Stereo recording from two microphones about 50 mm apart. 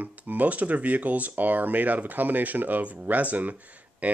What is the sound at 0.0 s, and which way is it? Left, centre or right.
Speech, right.